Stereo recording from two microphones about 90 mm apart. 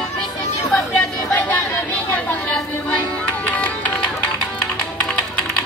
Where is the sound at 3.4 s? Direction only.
20° left (ahead or behind).